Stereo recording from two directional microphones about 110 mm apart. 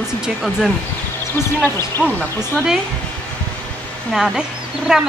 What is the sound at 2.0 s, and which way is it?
Speech, 10° left (ahead or behind).